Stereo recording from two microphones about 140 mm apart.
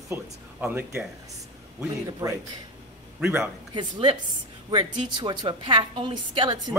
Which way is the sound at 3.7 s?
30° right (ahead or behind).